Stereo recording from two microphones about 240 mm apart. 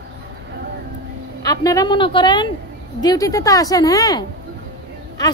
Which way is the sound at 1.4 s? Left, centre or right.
Centre.